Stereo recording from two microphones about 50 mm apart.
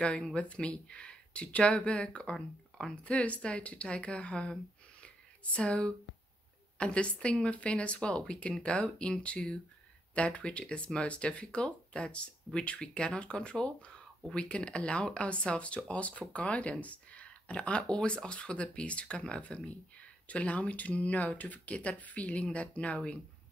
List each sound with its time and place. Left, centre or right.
0.0 s speech: centre
3.0 s speech: left
5.0 s a sound: left
6.8 s speech: left